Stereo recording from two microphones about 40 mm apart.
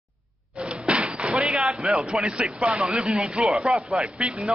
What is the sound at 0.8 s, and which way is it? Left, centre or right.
Slam, right.